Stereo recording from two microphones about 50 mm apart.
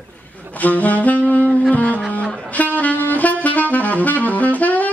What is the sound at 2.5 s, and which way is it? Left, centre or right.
Saxophone, left.